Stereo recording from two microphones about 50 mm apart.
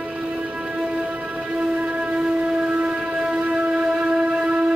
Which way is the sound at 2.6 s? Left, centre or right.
Right.